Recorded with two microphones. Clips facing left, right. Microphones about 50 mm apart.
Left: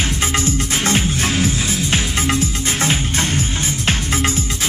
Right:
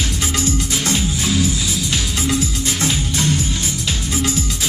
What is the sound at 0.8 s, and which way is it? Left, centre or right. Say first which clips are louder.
Music: left 3 dB; left.